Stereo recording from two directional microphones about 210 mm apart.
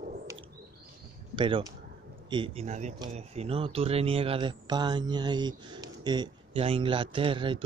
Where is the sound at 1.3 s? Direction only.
25° right (ahead or behind).